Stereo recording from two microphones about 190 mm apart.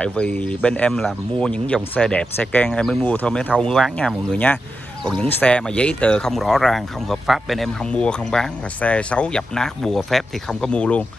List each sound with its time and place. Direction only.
0.0 s speech: 5° left (ahead or behind)